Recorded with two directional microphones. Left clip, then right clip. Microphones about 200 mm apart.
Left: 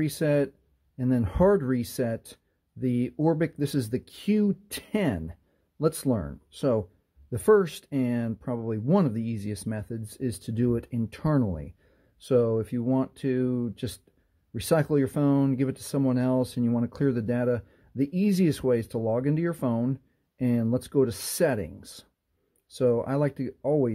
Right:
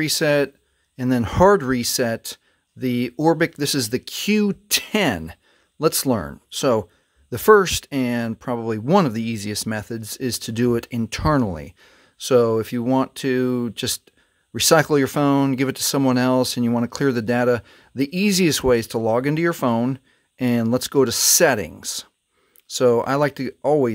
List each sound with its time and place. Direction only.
0.0 s speech: 20° right (ahead or behind)